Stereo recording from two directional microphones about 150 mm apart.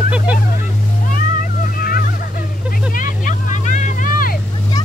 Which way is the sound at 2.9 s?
60° left (ahead or behind).